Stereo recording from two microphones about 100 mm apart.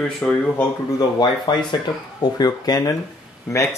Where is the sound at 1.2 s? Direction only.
50° left (ahead or behind).